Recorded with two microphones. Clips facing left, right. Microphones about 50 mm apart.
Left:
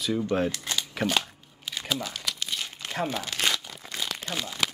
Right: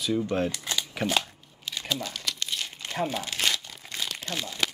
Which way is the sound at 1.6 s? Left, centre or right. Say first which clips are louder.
Left 1 dB; centre.